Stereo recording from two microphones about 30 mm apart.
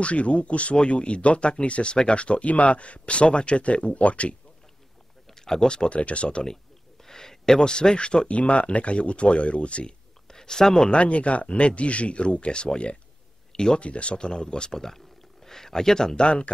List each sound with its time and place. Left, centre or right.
0.0 s speech: left
5.3 s a sound: centre
5.9 s speech: left
7.1 s speech: centre
8.3 s speech: left
10.2 s a sound: left
10.9 s speech: left
13.5 s a sound: left
13.7 s speech: left
14.1 s speech: left
14.8 s a sound: centre
16.2 s speech: left